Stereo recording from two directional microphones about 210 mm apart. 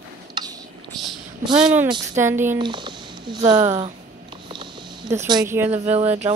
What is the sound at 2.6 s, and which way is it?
Speech, 20° right (ahead or behind).